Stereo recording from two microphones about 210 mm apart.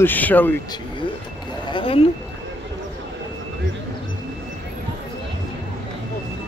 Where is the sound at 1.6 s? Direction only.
25° left (ahead or behind).